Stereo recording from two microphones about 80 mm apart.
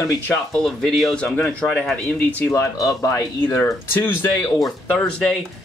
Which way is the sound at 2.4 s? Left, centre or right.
Left.